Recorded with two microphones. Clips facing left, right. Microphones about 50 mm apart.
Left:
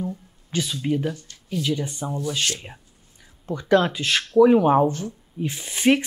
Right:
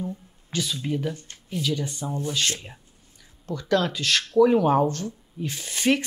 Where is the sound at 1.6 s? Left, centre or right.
Left.